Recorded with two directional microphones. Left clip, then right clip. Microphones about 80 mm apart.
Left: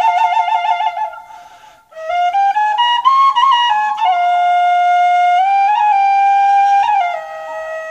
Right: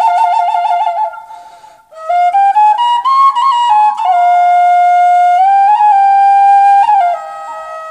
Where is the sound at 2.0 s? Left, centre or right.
Right.